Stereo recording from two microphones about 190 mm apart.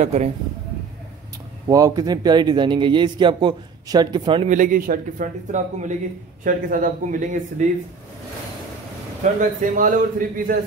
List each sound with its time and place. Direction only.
0.0 s a man's voice: 35° right (ahead or behind)
1.7 s a man's voice: 20° right (ahead or behind)
4.5 s speech: 45° right (ahead or behind)
9.2 s speech: 40° right (ahead or behind)